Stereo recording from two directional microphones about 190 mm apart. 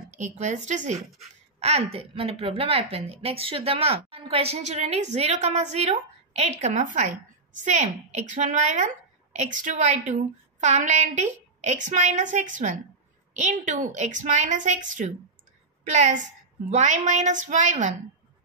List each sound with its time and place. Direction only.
0.2 s a woman's voice: 40° right (ahead or behind)